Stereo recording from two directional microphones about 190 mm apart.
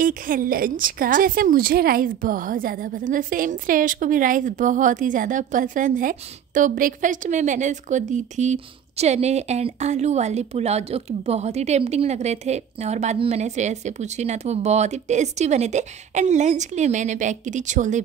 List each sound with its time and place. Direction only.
0.0 s a woman's voice: 45° right (ahead or behind)